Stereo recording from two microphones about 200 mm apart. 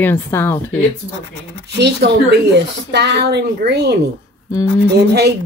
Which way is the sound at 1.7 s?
55° right (ahead or behind).